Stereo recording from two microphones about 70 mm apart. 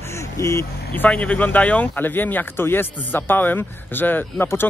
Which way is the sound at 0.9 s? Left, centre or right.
Left.